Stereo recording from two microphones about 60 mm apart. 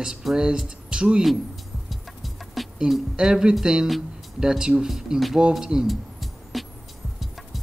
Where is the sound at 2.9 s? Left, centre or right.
Centre.